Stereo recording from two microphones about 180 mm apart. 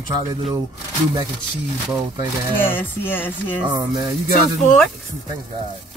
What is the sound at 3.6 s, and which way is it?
Speech, 20° right (ahead or behind).